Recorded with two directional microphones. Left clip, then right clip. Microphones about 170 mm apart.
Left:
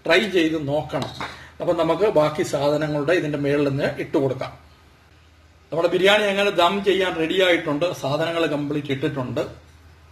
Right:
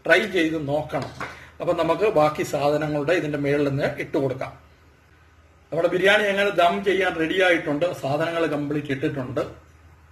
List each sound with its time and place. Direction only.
0.1 s a man's voice: 30° left (ahead or behind)
5.7 s a man's voice: 25° left (ahead or behind)